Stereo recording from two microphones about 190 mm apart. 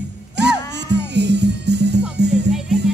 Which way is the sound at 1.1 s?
65° right (ahead or behind).